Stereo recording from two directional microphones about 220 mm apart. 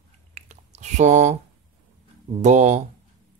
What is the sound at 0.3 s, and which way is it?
Chewing, 30° right (ahead or behind).